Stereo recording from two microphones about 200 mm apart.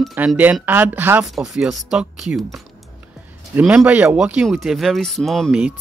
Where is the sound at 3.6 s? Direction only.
5° right (ahead or behind).